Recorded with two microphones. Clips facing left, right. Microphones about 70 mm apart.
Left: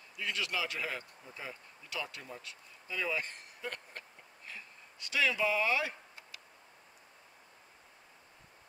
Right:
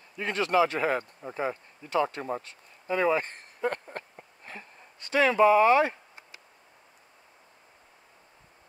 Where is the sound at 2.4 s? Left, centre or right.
Right.